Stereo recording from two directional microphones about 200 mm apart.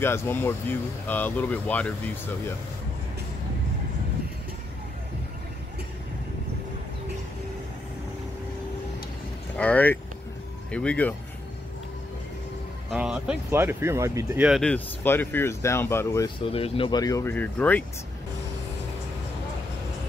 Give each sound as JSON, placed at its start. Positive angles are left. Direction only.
{"t": 0.0, "sound": "speech", "side_deg": 10}
{"t": 9.6, "sound": "speech", "side_deg": 5}
{"t": 12.9, "sound": "speech", "side_deg": -5}
{"t": 16.3, "sound": "speech", "side_deg": 30}